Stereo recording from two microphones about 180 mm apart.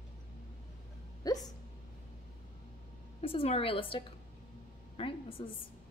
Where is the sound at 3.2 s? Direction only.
30° left (ahead or behind).